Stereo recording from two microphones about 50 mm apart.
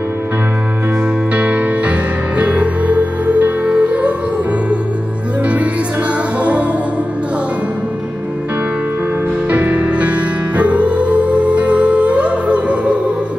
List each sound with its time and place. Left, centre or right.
1.3 s music: right
9.5 s music: right